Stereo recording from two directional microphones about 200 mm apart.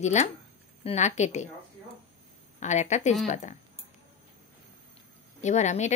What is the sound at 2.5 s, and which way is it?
A woman's voice, 35° left (ahead or behind).